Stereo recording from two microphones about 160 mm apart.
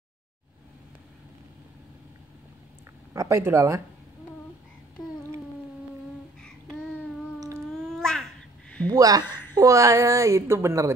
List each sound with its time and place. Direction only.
3.1 s speech: 15° right (ahead or behind)
7.3 s humming: 20° right (ahead or behind)
7.7 s babbling: 5° left (ahead or behind)
8.8 s a woman's voice: 20° right (ahead or behind)